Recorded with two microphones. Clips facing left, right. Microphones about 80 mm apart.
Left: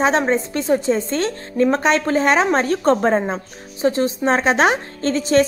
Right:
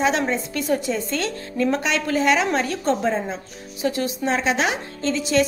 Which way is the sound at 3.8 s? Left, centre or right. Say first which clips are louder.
Left 5 dB; left.